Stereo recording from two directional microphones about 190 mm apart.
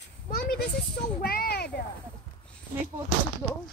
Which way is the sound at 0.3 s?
50° left (ahead or behind).